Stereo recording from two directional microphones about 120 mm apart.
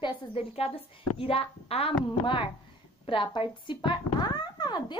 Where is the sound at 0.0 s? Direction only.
50° left (ahead or behind).